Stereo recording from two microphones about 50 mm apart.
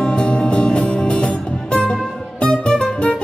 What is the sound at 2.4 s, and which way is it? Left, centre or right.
Music, centre.